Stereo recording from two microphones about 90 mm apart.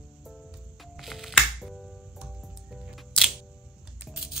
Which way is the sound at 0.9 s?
Centre (ahead or behind).